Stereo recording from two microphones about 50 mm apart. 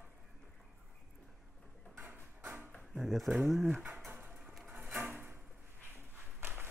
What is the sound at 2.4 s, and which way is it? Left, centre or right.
Dog, right.